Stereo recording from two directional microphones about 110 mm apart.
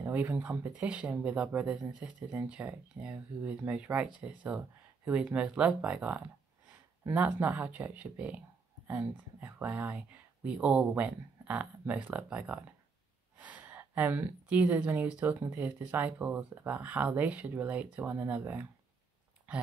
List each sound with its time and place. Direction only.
0.1 s speech: 15° right (ahead or behind)